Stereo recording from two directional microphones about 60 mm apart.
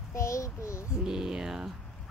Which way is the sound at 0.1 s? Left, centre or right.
Left.